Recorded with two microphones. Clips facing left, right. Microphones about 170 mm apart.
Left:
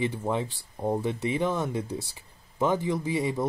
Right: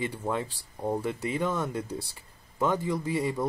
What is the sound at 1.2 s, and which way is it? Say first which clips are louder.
Speech: left 2 dB; 25° left (ahead or behind).